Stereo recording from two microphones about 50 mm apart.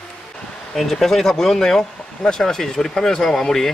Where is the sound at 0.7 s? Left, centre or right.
Centre.